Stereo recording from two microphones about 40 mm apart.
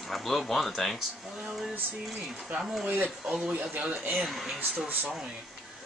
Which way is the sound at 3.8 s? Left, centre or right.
Right.